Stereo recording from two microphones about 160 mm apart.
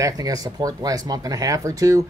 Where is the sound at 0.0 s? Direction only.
25° right (ahead or behind).